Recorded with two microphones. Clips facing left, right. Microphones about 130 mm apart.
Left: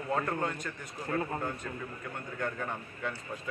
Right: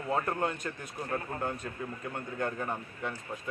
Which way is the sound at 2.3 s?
25° right (ahead or behind).